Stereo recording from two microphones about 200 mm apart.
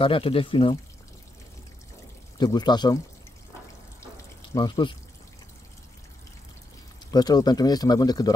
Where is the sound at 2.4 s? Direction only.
20° left (ahead or behind).